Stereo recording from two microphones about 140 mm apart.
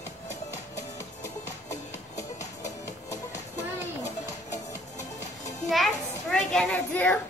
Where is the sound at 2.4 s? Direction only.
25° left (ahead or behind).